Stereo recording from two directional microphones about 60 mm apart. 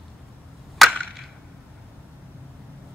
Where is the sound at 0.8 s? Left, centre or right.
Centre.